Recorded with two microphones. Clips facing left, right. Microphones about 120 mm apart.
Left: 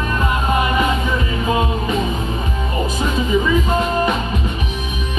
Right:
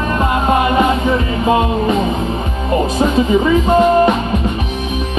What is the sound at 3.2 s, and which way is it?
Music, 25° right (ahead or behind).